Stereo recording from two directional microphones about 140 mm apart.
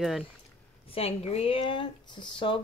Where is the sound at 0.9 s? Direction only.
45° left (ahead or behind).